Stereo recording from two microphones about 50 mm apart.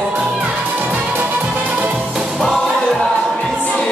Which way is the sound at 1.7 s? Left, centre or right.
Right.